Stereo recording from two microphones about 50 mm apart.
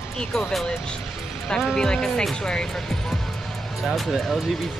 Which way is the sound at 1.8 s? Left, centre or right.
Centre.